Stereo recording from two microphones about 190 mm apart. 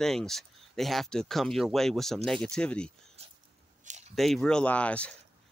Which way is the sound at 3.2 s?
35° right (ahead or behind).